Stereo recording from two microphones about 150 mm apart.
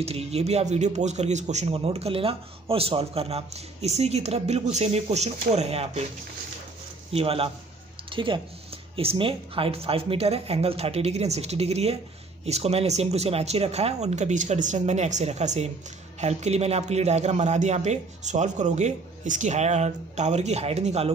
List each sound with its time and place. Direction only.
0.0 s speech: 45° right (ahead or behind)
7.1 s speech: 40° right (ahead or behind)